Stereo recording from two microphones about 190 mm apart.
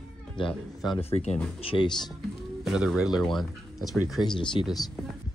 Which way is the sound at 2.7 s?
5° right (ahead or behind).